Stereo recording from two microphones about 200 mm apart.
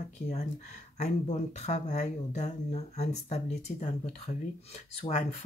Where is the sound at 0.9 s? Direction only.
35° left (ahead or behind).